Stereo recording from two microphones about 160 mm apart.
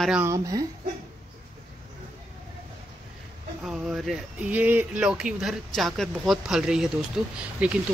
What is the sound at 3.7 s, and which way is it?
Speech, 5° right (ahead or behind).